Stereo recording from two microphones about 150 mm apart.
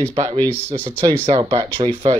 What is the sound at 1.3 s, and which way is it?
Speech, 35° right (ahead or behind).